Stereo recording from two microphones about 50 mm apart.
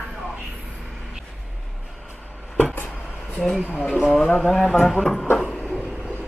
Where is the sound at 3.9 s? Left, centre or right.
Centre.